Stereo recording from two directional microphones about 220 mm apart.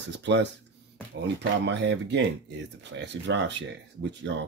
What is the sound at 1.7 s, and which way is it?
Speech, 55° right (ahead or behind).